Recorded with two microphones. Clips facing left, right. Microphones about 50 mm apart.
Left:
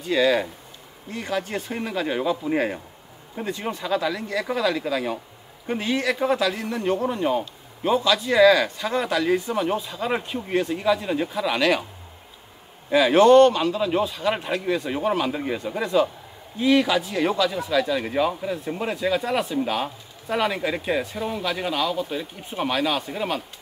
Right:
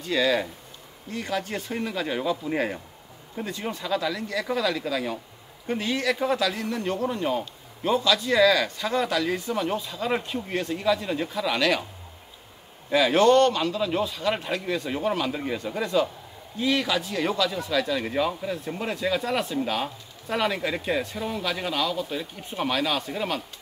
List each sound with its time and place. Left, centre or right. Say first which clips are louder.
0.0 s a man's voice: left 3 dB; centre
12.9 s a man's voice: left 4 dB; centre